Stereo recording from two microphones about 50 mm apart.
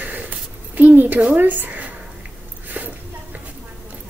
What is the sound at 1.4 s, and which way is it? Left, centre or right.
Speech, right.